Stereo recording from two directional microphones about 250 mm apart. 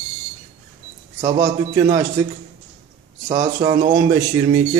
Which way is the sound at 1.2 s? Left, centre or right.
Centre.